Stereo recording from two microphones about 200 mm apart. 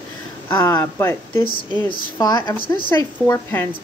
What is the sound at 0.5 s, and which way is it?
Speech, 10° left (ahead or behind).